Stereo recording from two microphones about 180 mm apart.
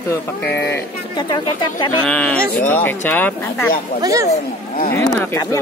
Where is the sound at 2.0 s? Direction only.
5° left (ahead or behind).